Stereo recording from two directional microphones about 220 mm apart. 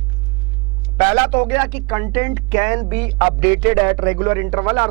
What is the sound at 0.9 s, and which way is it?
Speech, 25° right (ahead or behind).